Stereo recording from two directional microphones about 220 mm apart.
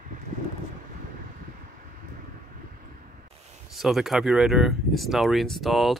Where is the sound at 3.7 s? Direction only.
Centre (ahead or behind).